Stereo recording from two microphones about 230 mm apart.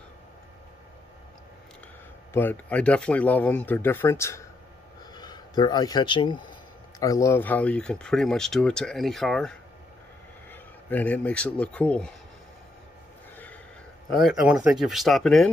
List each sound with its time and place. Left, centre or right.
2.3 s speech: centre
14.1 s speech: centre